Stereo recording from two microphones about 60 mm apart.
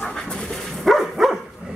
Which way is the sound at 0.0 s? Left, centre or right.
Centre.